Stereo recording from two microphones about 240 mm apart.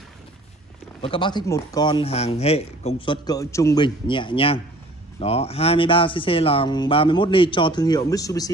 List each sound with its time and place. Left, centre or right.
1.0 s speech: left
3.3 s speech: centre